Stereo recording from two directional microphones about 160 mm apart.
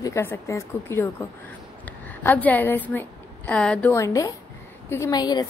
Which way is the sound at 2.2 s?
10° left (ahead or behind).